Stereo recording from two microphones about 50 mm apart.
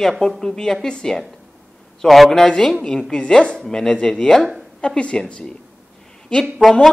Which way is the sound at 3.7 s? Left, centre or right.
Centre.